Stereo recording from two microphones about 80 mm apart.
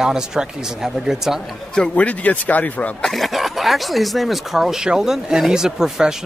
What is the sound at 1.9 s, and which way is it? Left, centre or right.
Speech, centre.